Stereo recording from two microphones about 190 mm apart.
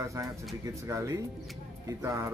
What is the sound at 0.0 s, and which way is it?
Speech, 15° right (ahead or behind).